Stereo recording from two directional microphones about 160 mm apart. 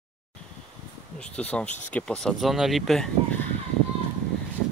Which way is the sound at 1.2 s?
10° left (ahead or behind).